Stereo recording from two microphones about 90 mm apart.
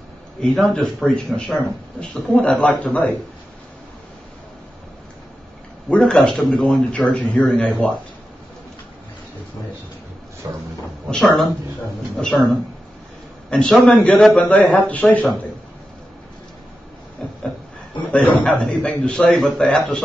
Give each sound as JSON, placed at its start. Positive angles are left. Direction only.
{"t": 0.4, "sound": "a man's voice", "side_deg": 10}
{"t": 5.9, "sound": "a man's voice", "side_deg": 10}
{"t": 10.4, "sound": "a sound", "side_deg": -40}
{"t": 11.1, "sound": "a man's voice", "side_deg": 10}
{"t": 18.1, "sound": "a man's voice", "side_deg": 15}